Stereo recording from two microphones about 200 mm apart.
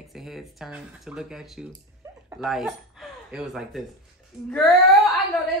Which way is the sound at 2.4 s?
Centre (ahead or behind).